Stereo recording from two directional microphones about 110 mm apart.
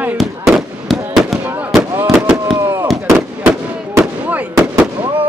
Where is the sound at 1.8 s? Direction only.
25° right (ahead or behind).